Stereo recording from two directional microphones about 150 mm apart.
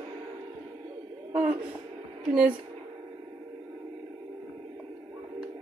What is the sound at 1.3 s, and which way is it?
Speech, 10° right (ahead or behind).